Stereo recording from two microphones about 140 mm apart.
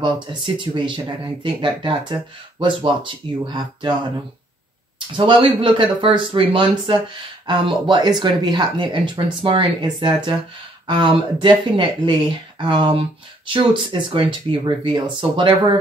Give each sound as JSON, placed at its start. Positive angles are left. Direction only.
{"t": 0.0, "sound": "speech", "side_deg": -35}
{"t": 5.1, "sound": "speech", "side_deg": -40}